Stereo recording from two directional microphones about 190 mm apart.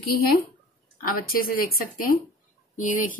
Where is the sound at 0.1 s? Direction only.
50° left (ahead or behind).